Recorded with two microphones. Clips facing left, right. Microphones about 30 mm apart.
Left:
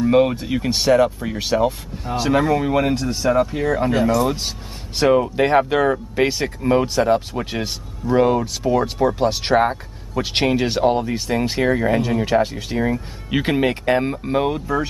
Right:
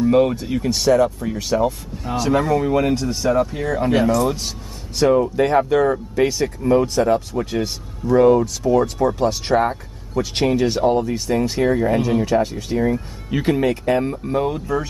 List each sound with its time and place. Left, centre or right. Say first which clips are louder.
0.0 s speech: even; centre
4.4 s speech: left 1 dB; left
10.2 s speech: even; left
14.5 s speech: left 1 dB; left